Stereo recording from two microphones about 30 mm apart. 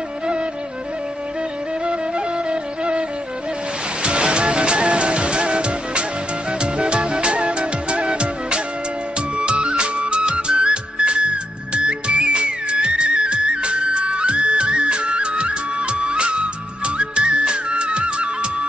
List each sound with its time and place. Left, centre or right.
1.9 s music: right